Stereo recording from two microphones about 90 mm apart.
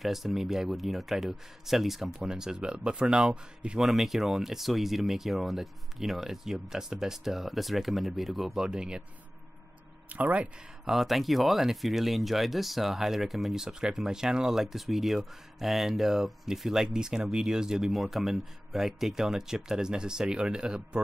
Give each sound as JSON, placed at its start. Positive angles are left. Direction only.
{"t": 0.0, "sound": "speech", "side_deg": 0}
{"t": 10.0, "sound": "speech", "side_deg": -15}
{"t": 10.9, "sound": "speech", "side_deg": 0}